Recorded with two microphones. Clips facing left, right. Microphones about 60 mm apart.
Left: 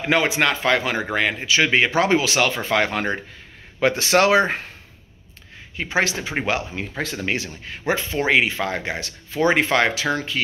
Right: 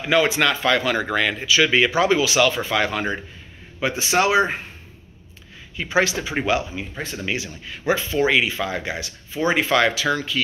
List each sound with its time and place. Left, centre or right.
0.2 s speech: left
3.8 s speech: left
5.8 s speech: left
6.4 s speech: left